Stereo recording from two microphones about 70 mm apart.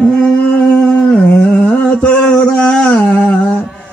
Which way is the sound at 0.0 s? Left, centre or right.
Centre.